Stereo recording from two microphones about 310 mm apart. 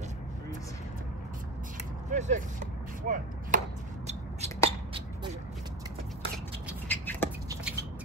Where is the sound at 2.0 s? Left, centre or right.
Right.